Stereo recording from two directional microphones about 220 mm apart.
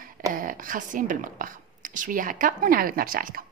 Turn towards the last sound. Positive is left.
turn(degrees=-40)  # may be behind; listen again after turning